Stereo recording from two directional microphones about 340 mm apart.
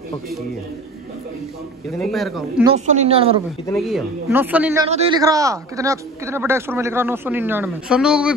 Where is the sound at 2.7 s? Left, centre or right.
Centre.